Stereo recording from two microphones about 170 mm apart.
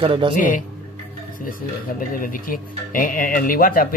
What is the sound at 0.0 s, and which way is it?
Speech, 30° right (ahead or behind).